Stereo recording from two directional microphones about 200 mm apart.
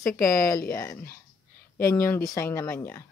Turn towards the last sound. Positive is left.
turn(degrees=15)  # may be behind; listen again after turning